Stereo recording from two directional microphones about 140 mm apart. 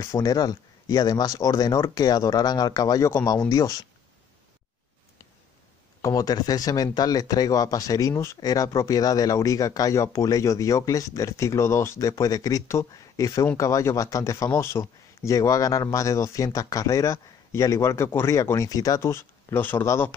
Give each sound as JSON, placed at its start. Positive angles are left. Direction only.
{"t": 0.0, "sound": "speech", "side_deg": 25}
{"t": 6.0, "sound": "speech", "side_deg": 25}